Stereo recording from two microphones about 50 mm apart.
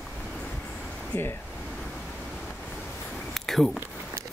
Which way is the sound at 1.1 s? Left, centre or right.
Left.